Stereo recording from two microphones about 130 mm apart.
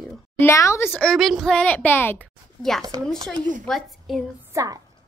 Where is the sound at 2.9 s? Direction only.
30° right (ahead or behind).